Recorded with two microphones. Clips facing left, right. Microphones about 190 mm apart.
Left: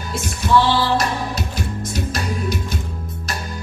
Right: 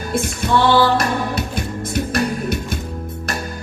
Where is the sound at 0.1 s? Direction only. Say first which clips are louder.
Left 1 dB; 55° right (ahead or behind).